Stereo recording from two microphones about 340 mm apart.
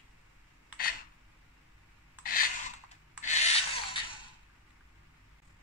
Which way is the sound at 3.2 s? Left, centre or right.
Centre.